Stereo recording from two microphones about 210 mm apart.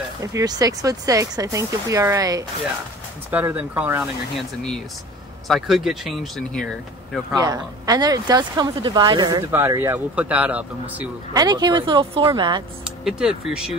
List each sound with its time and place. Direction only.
0.2 s speech: 15° right (ahead or behind)
5.5 s speech: centre (ahead or behind)
7.3 s speech: 15° right (ahead or behind)
11.3 s speech: 20° right (ahead or behind)
13.0 s speech: 5° right (ahead or behind)